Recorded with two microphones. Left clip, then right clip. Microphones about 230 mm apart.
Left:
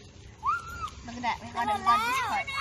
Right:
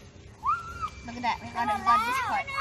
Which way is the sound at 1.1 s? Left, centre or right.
Centre.